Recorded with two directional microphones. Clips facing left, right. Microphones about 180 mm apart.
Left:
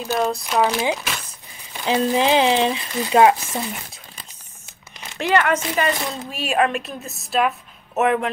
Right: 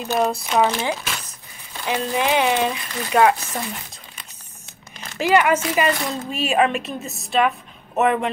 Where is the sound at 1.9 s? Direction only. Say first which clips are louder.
Left 3 dB; 25° left (ahead or behind).